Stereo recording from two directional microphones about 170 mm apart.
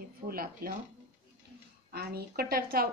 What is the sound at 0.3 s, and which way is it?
Speech, 60° right (ahead or behind).